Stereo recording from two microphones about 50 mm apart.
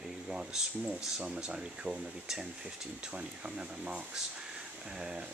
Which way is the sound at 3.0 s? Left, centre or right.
Right.